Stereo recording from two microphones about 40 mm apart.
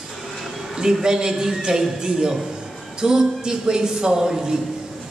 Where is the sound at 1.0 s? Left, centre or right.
Centre.